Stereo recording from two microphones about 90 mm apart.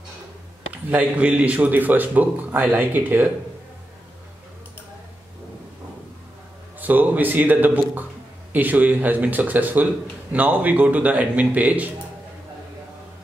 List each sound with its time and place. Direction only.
0.8 s a man's voice: 20° right (ahead or behind)
6.8 s a man's voice: 20° right (ahead or behind)